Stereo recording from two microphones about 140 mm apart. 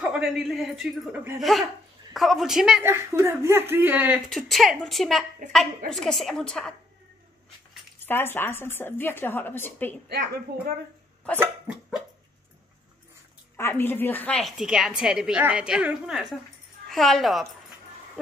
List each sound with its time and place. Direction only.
0.0 s a woman's voice: 5° right (ahead or behind)
2.8 s speech: 20° right (ahead or behind)
4.3 s a woman's voice: centre (ahead or behind)
8.0 s a woman's voice: 15° left (ahead or behind)
11.3 s speech: 5° right (ahead or behind)
13.6 s a woman's voice: 15° left (ahead or behind); by 17.5 s centre (ahead or behind)